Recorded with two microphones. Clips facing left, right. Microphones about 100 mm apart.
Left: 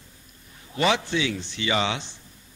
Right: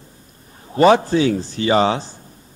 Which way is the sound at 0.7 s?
40° right (ahead or behind).